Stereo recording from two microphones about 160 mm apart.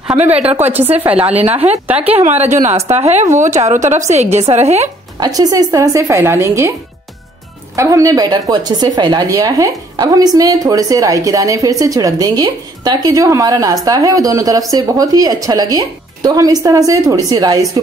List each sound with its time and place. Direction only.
1.2 s a woman's voice: 40° right (ahead or behind)
5.2 s a woman's voice: 25° right (ahead or behind)
7.7 s a woman's voice: 20° right (ahead or behind)